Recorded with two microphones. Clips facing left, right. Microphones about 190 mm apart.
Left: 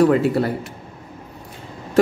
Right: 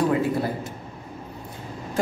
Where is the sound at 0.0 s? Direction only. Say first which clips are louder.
Left 6 dB; 70° left (ahead or behind).